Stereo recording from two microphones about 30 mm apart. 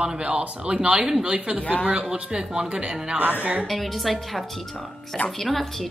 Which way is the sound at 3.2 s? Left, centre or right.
Right.